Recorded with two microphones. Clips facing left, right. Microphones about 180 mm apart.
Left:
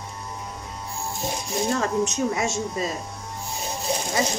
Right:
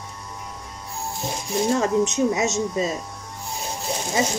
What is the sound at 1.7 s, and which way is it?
Speech, 20° right (ahead or behind).